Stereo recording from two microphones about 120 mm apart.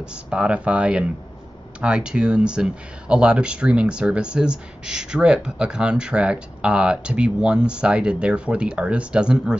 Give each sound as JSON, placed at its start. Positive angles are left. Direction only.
{"t": 0.0, "sound": "speech", "side_deg": -5}